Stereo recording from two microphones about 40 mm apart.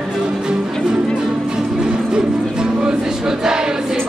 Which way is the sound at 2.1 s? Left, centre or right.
Centre.